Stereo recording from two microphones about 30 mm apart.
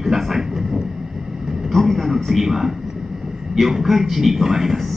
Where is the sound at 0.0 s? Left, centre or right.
Centre.